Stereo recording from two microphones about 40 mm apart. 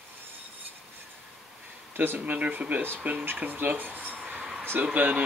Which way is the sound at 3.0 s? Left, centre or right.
Right.